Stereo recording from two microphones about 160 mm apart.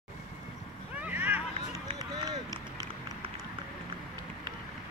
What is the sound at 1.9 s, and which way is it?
Run, 30° right (ahead or behind).